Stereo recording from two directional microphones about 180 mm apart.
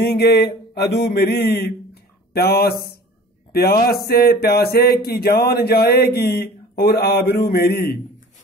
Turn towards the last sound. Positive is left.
turn(degrees=60)  # may be behind; listen again after turning